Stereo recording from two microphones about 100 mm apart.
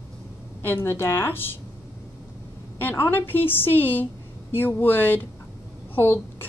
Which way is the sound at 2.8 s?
20° left (ahead or behind).